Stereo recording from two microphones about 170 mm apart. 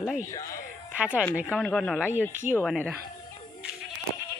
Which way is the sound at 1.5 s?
5° left (ahead or behind).